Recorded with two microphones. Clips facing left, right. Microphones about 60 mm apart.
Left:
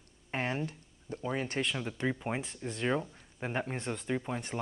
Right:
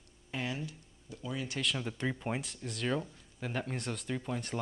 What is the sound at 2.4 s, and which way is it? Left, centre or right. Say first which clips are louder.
Speech: left 3 dB; left.